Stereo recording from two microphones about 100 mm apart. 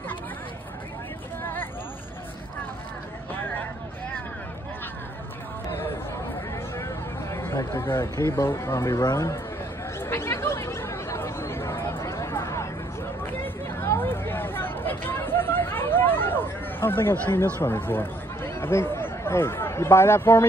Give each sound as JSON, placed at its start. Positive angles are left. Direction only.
{"t": 1.4, "sound": "a sound", "side_deg": 20}
{"t": 6.8, "sound": "speech", "side_deg": 25}
{"t": 9.9, "sound": "chatter", "side_deg": 25}
{"t": 13.2, "sound": "hubbub", "side_deg": 20}
{"t": 16.8, "sound": "speech", "side_deg": 25}